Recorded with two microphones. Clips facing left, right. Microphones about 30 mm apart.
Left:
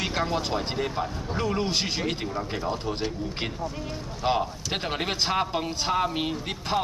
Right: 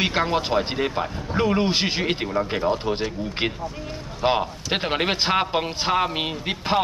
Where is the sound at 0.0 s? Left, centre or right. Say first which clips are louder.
Right 5 dB; right.